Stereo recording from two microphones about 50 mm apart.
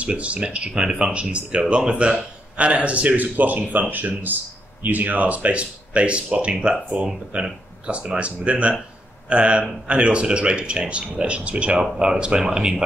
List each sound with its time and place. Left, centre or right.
0.0 s speech: right